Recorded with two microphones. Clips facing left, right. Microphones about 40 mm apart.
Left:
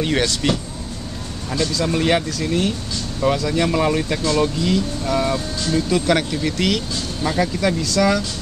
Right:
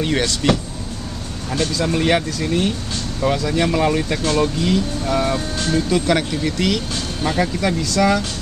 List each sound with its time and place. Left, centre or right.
0.0 s speech: centre
1.5 s speech: right
1.9 s speech: centre
7.2 s speech: centre